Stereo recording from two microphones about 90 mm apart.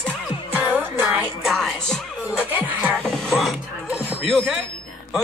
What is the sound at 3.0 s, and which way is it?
Speech, 5° left (ahead or behind).